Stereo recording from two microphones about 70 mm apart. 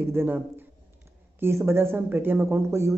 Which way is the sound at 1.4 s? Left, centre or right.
Right.